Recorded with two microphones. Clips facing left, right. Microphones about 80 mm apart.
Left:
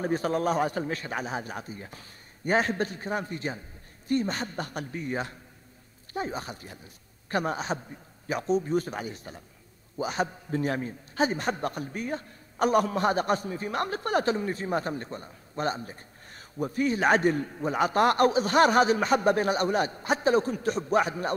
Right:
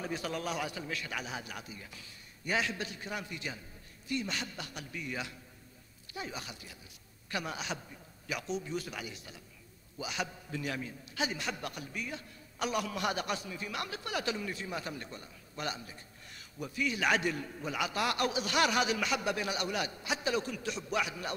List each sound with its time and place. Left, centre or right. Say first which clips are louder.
0.0 s a man's voice: left 10 dB; left